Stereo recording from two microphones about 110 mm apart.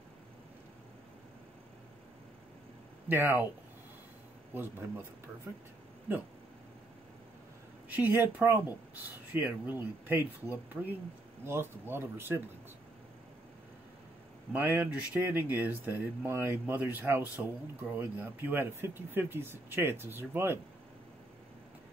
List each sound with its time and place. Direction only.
3.1 s speech: 20° right (ahead or behind)
6.1 s speech: 20° right (ahead or behind)
7.9 s speech: 20° right (ahead or behind)
14.5 s speech: 20° right (ahead or behind)